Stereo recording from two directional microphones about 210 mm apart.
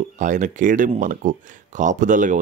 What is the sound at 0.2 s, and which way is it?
Speech, 35° right (ahead or behind).